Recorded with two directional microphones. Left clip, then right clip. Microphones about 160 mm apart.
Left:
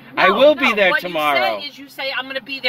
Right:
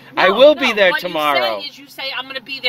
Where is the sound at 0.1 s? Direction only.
35° right (ahead or behind).